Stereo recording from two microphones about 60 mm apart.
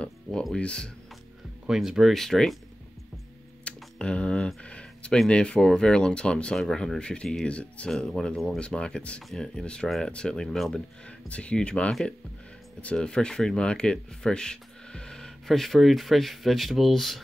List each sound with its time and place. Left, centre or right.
0.0 s music: centre
0.6 s speech: centre
1.7 s speech: centre
3.6 s typing: centre
4.6 s a sound: centre
5.3 s speech: centre
7.9 s speech: centre
11.1 s speech: left; by 17.2 s centre